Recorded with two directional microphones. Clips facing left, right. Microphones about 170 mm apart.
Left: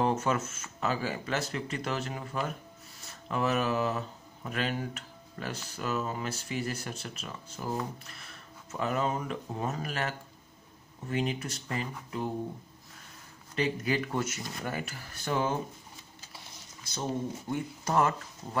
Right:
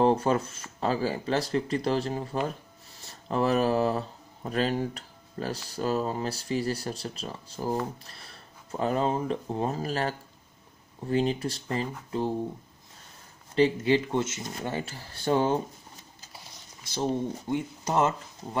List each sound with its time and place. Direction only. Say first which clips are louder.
0.0 s speech: right 5 dB; 35° right (ahead or behind)
13.6 s speech: right 7 dB; 30° right (ahead or behind)
16.9 s speech: right 5 dB; 30° right (ahead or behind)